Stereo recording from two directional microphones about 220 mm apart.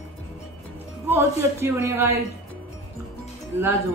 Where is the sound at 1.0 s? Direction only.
10° right (ahead or behind).